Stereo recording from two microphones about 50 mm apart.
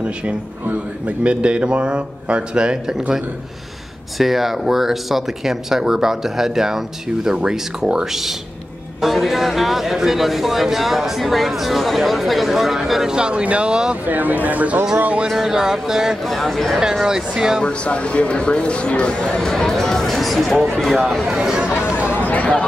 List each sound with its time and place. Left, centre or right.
0.0 s a man's voice: right
4.2 s a man's voice: centre
13.1 s a man's voice: centre
14.0 s speech: right
15.2 s speech: centre
16.3 s a man's voice: centre
17.0 s speech: centre
17.6 s a man's voice: left; by 21.0 s centre
21.3 s speech: centre
21.8 s chatter: right
22.2 s chatter: left